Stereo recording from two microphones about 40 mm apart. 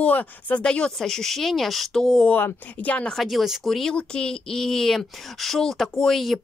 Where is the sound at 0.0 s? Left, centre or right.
Left.